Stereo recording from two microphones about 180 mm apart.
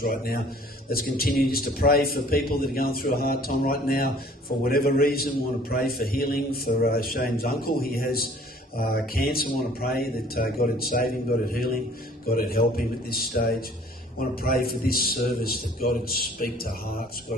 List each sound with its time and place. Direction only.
0.0 s a man's voice: 55° left (ahead or behind)